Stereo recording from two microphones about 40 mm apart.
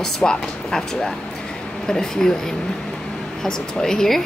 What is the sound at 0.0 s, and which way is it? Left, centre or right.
A woman's voice, centre.